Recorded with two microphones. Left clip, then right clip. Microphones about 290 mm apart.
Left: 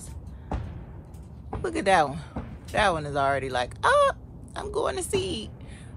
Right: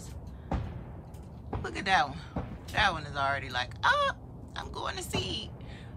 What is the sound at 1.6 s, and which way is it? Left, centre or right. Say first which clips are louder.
A woman's voice: left 6 dB; centre.